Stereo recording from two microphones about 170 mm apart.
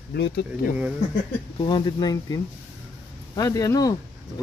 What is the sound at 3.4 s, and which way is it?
Speech, 20° left (ahead or behind).